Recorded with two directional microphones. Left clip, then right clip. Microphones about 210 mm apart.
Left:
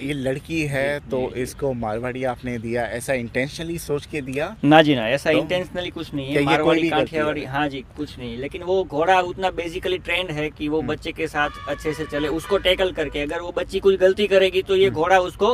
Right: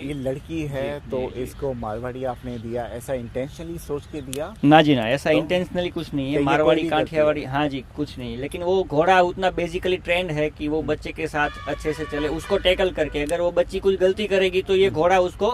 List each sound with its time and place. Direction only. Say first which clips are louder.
0.1 s speech: left 3 dB; 20° left (ahead or behind)
4.6 s speech: left 1 dB; centre (ahead or behind)
12.4 s speech: even; centre (ahead or behind)